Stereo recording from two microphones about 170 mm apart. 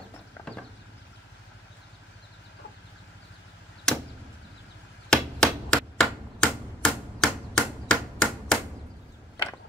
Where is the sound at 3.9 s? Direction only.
5° left (ahead or behind).